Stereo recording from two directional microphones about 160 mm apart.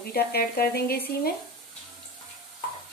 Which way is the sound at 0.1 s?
75° left (ahead or behind).